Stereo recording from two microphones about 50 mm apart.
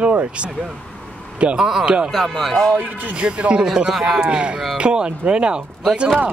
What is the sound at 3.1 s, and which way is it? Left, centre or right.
Speech, right.